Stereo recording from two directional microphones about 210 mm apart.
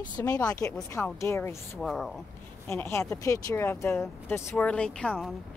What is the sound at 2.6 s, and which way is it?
Speech, 10° left (ahead or behind).